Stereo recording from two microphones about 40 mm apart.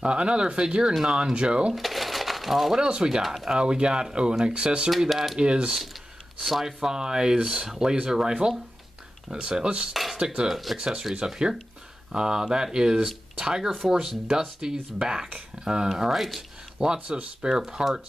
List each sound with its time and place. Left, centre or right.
0.0 s speech: right
1.7 s cash register: centre
2.8 s speech: right
5.1 s speech: centre
5.4 s speech: right
10.5 s speech: centre
10.8 s speech: centre
15.9 s speech: centre
16.7 s speech: centre